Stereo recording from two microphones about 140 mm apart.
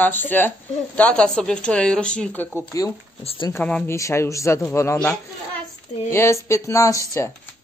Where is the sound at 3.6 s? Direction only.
10° left (ahead or behind).